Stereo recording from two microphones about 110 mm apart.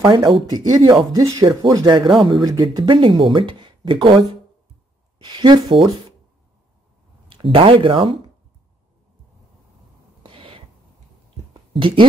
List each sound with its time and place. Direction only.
0.0 s speech: 50° right (ahead or behind)
0.5 s speech: 35° right (ahead or behind)
7.2 s speech: 55° right (ahead or behind)
10.2 s a sound: 55° right (ahead or behind)
11.7 s speech: 50° right (ahead or behind)